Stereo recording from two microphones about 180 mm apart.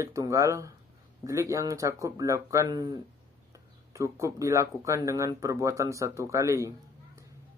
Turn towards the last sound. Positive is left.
turn(degrees=-15)  # may be behind; listen again after turning